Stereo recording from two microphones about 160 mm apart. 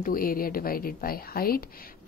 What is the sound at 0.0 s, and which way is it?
Speech, 65° left (ahead or behind).